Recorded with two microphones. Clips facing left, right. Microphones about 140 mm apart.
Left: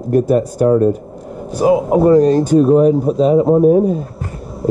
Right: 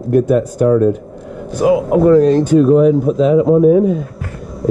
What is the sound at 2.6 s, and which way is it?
Speech, 40° left (ahead or behind).